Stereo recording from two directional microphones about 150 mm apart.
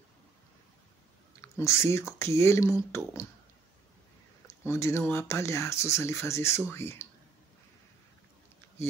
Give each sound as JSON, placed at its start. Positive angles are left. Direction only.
{"t": 1.4, "sound": "speech", "side_deg": 20}
{"t": 4.5, "sound": "speech", "side_deg": 20}